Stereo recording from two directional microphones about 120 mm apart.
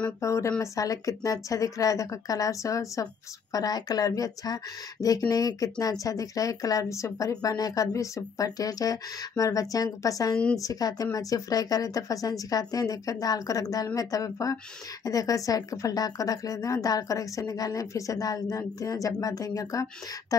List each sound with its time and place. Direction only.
0.2 s speech: 25° left (ahead or behind)
10.3 s a woman's voice: 5° left (ahead or behind)
10.6 s speech: 30° left (ahead or behind)